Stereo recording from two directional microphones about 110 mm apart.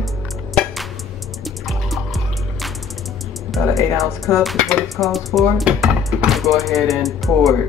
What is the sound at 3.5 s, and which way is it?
Speech, centre (ahead or behind).